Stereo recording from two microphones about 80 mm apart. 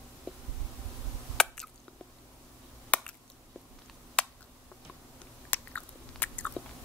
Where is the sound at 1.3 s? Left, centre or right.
Centre.